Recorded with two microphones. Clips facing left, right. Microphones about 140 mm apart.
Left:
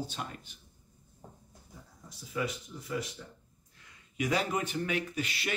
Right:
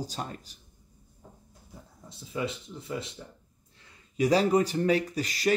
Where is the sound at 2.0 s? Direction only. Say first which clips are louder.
Right 2 dB; 25° right (ahead or behind).